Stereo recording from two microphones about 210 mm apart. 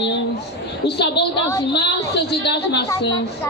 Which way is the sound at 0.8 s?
50° left (ahead or behind).